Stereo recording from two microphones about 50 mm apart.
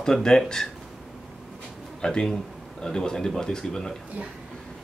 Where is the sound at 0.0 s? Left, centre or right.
Centre.